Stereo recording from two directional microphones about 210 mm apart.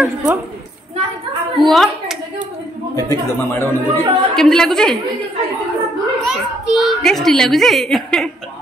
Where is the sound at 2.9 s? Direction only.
15° left (ahead or behind).